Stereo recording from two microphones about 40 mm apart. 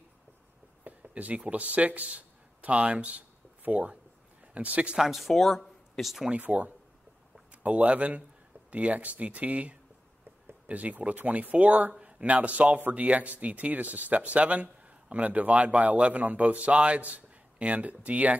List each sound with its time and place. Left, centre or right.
0.8 s speech: right
4.9 s speech: centre
5.3 s speech: centre
6.4 s speech: right